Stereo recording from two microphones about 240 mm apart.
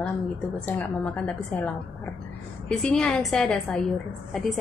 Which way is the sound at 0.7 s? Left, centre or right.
Centre.